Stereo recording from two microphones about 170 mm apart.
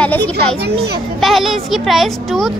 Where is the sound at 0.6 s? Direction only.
70° right (ahead or behind).